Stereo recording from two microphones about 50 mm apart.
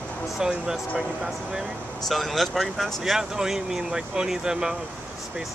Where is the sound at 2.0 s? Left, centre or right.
Centre.